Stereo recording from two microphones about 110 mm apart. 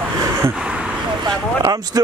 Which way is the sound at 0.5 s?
10° right (ahead or behind).